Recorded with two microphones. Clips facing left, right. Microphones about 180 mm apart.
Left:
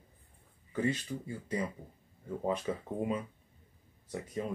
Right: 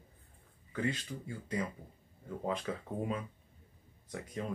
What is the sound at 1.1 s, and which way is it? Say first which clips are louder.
Speech: left 4 dB; 15° left (ahead or behind).